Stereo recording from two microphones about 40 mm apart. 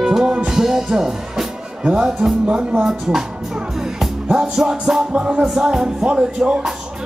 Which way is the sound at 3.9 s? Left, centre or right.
Centre.